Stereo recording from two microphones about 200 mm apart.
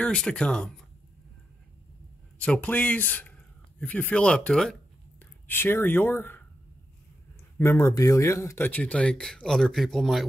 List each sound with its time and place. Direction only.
0.0 s speech: 5° left (ahead or behind)
2.3 s speech: 5° left (ahead or behind)
7.5 s speech: 10° left (ahead or behind)